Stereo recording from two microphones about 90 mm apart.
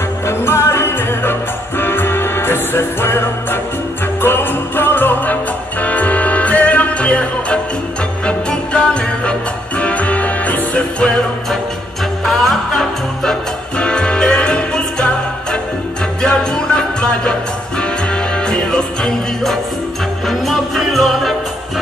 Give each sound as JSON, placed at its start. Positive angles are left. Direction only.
{"t": 0.3, "sound": "music", "side_deg": 25}
{"t": 12.3, "sound": "music", "side_deg": 5}